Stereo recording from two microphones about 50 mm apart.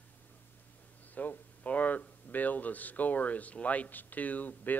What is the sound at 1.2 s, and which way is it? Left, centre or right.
Speech, left.